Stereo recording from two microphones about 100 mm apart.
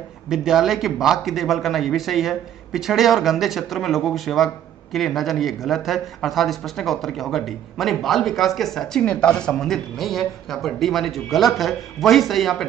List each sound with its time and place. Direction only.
0.3 s speech: 5° right (ahead or behind)